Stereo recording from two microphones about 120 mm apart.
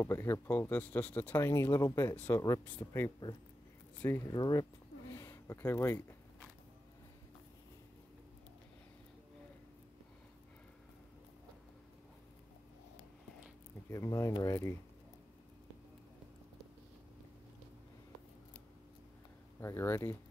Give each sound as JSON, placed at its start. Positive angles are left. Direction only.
{"t": 0.0, "sound": "speech", "side_deg": 20}
{"t": 4.3, "sound": "speech", "side_deg": 35}
{"t": 5.1, "sound": "speech", "side_deg": 25}
{"t": 13.8, "sound": "speech", "side_deg": 25}
{"t": 19.6, "sound": "speech", "side_deg": 20}